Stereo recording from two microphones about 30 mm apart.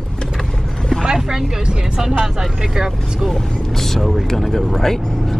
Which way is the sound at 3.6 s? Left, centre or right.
Centre.